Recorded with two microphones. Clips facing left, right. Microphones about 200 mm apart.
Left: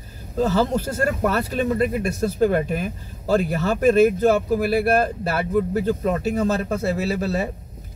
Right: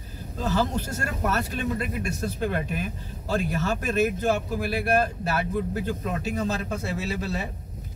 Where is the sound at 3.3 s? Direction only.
60° left (ahead or behind).